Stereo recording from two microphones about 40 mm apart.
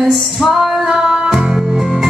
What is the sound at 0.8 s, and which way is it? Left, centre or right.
Music, centre.